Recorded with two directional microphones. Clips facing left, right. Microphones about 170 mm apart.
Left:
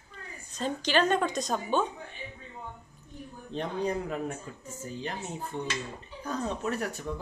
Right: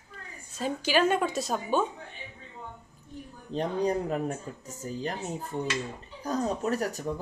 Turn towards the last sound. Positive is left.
turn(degrees=-40)  # may be behind; listen again after turning